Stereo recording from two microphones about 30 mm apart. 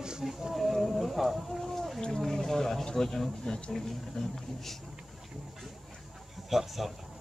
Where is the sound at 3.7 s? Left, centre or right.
Centre.